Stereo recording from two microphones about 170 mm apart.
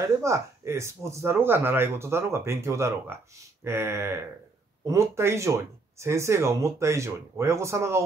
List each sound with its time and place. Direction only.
0.2 s speech: 15° right (ahead or behind)